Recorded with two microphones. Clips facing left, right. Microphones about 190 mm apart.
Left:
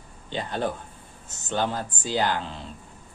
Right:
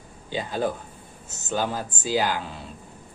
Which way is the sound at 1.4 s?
5° right (ahead or behind).